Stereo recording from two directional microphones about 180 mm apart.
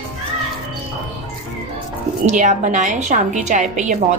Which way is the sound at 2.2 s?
45° right (ahead or behind).